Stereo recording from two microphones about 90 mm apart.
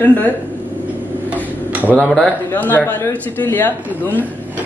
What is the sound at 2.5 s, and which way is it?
Speech, 20° left (ahead or behind).